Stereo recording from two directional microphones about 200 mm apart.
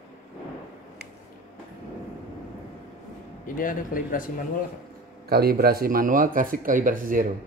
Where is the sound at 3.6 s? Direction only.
45° left (ahead or behind).